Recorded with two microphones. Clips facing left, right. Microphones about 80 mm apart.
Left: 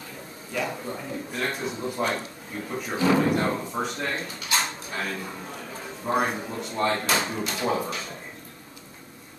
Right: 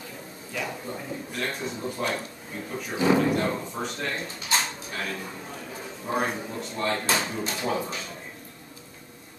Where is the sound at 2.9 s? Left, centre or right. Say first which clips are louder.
Even; centre.